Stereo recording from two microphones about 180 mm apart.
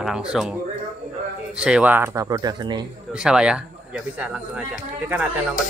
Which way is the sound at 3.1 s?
5° right (ahead or behind).